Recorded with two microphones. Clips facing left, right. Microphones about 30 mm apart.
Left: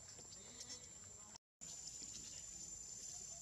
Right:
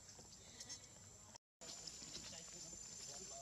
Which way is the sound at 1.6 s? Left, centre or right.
Right.